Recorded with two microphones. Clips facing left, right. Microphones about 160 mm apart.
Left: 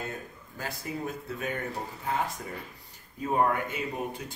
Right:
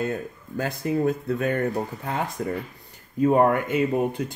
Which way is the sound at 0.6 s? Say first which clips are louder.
Right 11 dB; 60° right (ahead or behind).